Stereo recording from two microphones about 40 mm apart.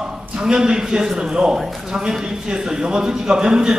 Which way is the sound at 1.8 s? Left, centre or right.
Centre.